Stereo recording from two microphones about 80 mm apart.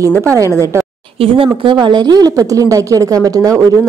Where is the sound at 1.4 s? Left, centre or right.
Right.